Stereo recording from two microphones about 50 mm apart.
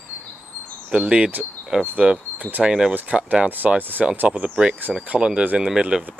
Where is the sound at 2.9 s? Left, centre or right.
Right.